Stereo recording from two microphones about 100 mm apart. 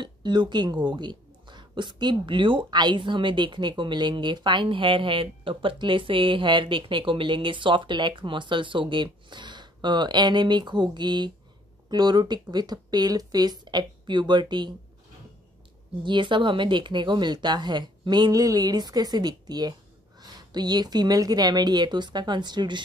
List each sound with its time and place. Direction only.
0.0 s speech: 50° right (ahead or behind)
16.0 s speech: 50° right (ahead or behind)